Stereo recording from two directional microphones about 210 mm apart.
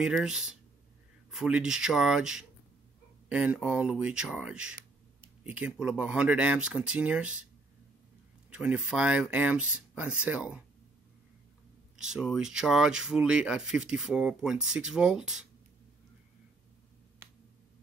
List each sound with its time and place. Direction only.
0.0 s speech: 5° right (ahead or behind)
8.5 s speech: 5° right (ahead or behind)
12.0 s speech: centre (ahead or behind)